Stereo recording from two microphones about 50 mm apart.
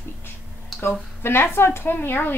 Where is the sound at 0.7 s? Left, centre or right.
Left.